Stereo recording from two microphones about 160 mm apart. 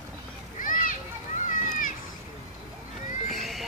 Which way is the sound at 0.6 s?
55° left (ahead or behind).